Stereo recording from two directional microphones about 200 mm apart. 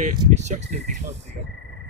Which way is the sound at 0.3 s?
35° right (ahead or behind).